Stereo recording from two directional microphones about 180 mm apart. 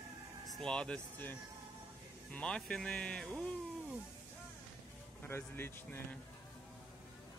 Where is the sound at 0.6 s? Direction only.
5° left (ahead or behind).